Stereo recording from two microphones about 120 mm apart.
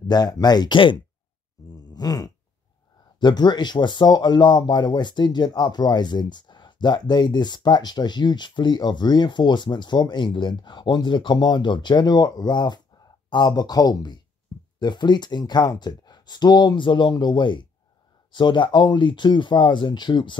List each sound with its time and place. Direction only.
0.1 s speech: 35° left (ahead or behind)
1.7 s groan: 35° left (ahead or behind)
3.2 s speech: 35° left (ahead or behind)